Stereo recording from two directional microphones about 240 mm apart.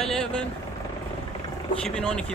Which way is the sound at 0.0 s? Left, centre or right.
Centre.